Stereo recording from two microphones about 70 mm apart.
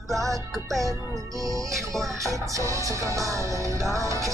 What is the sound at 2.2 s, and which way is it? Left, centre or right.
Music, right.